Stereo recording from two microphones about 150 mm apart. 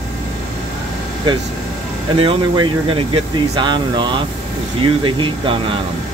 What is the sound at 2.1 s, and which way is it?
Speech, 35° right (ahead or behind).